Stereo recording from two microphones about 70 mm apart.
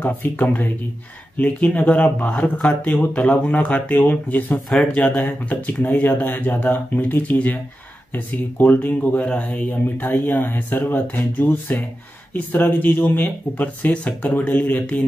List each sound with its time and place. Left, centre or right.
0.0 s speech: left
4.6 s speech: centre
5.1 s speech: left
8.8 s speech: centre